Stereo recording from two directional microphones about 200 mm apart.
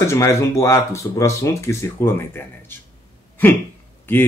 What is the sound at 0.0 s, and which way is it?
Speech, 15° left (ahead or behind).